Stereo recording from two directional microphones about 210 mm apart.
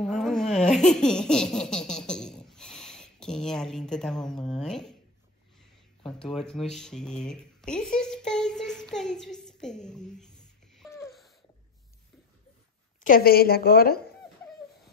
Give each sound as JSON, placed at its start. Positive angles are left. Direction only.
{"t": 0.0, "sound": "laughter", "side_deg": 0}
{"t": 6.0, "sound": "speech", "side_deg": 0}
{"t": 8.3, "sound": "a sound", "side_deg": 5}
{"t": 13.0, "sound": "a woman's voice", "side_deg": 40}